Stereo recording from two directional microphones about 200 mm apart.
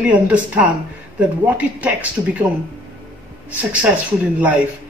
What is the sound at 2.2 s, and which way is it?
Speech, 20° right (ahead or behind).